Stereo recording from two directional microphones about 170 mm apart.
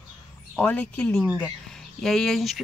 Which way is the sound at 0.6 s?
10° left (ahead or behind).